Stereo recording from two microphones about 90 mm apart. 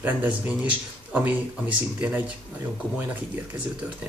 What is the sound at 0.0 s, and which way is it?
Speech, 15° right (ahead or behind).